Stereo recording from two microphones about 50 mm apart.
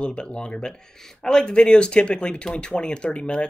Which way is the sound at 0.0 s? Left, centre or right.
Centre.